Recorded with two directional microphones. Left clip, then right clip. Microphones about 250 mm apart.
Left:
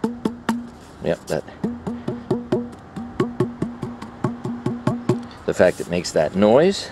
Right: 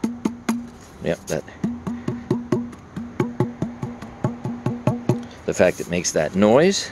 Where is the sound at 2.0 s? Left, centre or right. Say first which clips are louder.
Left 1 dB; left.